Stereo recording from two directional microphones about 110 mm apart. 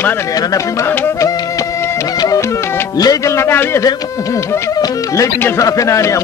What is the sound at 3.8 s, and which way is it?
Speech, 30° left (ahead or behind).